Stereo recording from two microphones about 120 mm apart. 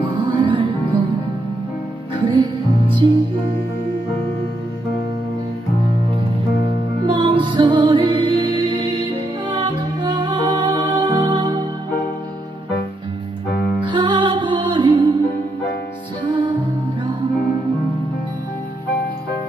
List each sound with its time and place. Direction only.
0.2 s music: 40° right (ahead or behind)
2.1 s music: 40° right (ahead or behind)
7.1 s music: 40° right (ahead or behind)
13.7 s music: 40° right (ahead or behind)
16.3 s music: 40° right (ahead or behind)